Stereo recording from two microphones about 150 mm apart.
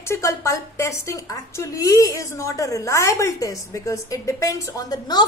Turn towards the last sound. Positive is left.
turn(degrees=25)  # may be behind; listen again after turning